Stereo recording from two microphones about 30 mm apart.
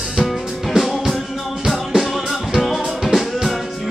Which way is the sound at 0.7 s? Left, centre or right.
Centre.